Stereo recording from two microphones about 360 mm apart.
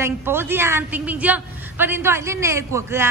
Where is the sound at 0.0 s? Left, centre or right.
Centre.